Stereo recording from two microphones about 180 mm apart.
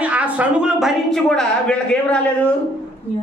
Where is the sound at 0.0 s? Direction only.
5° right (ahead or behind).